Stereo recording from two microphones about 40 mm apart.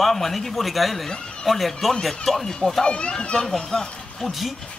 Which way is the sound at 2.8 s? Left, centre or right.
Left.